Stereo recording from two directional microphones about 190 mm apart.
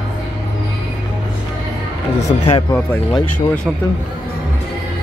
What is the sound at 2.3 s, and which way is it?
Speech, 30° left (ahead or behind).